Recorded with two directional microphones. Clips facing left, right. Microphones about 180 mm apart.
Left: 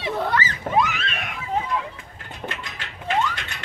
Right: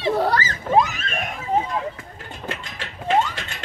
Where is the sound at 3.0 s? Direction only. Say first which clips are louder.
Right 3 dB; 30° right (ahead or behind).